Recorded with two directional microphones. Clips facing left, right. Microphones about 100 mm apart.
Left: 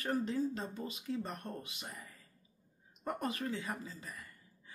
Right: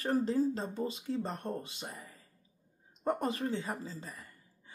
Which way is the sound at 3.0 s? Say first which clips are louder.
Right 5 dB; 30° right (ahead or behind).